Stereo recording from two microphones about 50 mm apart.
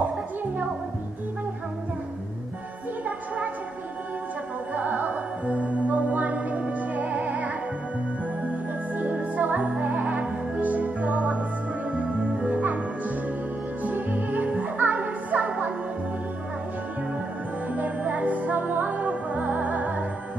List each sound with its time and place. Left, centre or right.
4.7 s music: right
8.9 s music: right
13.8 s music: right
17.7 s music: right